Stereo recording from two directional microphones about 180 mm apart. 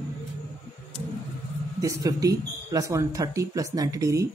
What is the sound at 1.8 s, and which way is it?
Speech, 20° right (ahead or behind).